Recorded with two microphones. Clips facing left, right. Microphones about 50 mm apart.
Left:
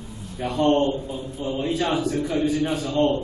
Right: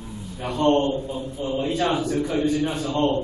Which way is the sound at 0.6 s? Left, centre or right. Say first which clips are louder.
Even; centre.